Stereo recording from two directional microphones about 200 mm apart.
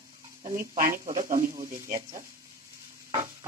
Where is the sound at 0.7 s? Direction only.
45° right (ahead or behind).